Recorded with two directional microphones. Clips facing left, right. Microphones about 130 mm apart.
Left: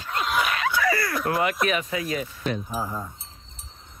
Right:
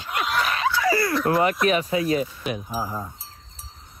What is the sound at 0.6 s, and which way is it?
Laughter, 25° right (ahead or behind).